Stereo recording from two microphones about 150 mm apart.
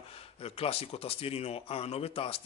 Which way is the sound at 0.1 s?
40° left (ahead or behind).